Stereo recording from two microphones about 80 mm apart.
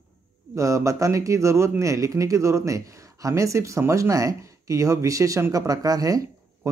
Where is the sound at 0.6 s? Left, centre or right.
Right.